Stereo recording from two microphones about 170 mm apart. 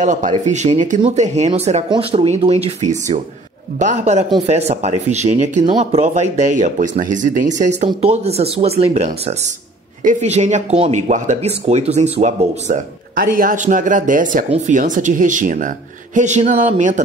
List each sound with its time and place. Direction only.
0.0 s speech: 45° right (ahead or behind)